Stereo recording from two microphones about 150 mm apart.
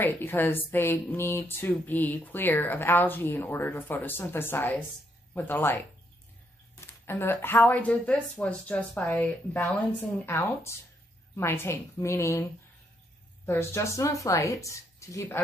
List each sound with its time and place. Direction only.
0.0 s speech: 15° left (ahead or behind)
13.5 s speech: 15° left (ahead or behind)